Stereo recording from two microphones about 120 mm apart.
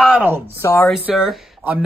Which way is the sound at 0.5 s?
25° left (ahead or behind).